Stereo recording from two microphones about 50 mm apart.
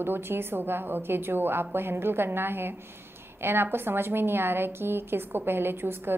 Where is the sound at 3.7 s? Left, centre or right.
Right.